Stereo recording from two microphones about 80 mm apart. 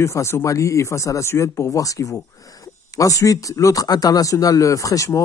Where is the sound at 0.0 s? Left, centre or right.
Left.